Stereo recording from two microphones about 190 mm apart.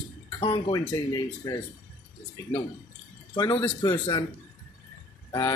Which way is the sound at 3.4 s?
15° left (ahead or behind).